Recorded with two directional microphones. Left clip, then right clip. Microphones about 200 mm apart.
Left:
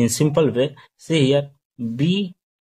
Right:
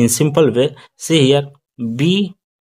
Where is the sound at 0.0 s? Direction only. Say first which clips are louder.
Right 5 dB; 25° right (ahead or behind).